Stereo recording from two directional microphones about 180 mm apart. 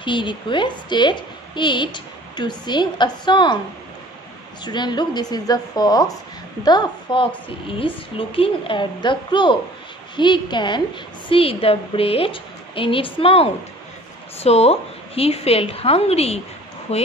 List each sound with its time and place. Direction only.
0.0 s a woman's voice: 25° left (ahead or behind)
4.6 s a woman's voice: 25° left (ahead or behind)